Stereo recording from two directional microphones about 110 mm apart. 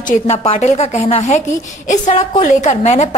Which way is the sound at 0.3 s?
80° left.